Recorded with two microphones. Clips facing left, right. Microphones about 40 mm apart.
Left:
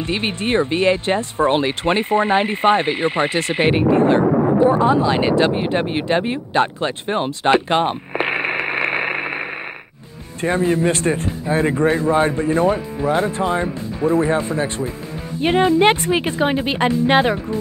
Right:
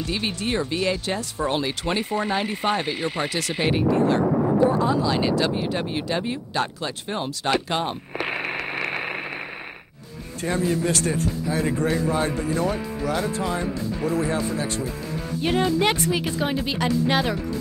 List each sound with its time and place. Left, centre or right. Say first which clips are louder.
0.0 s speech: left 5 dB; left